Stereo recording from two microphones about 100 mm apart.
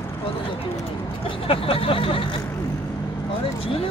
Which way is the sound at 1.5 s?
70° left (ahead or behind).